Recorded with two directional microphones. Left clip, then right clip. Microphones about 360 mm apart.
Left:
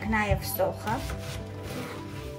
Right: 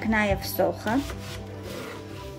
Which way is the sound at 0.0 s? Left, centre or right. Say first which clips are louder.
Right 3 dB; right.